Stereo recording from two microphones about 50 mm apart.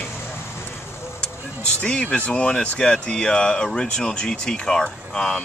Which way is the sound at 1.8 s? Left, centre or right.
Left.